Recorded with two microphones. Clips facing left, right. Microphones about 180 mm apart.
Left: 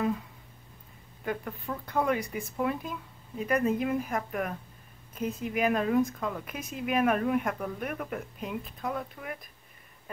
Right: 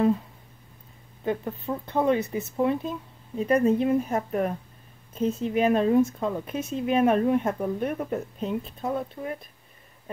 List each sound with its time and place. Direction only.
1.2 s speech: 25° right (ahead or behind)